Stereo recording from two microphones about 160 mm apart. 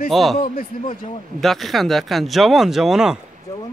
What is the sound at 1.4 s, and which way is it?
Speech, centre (ahead or behind).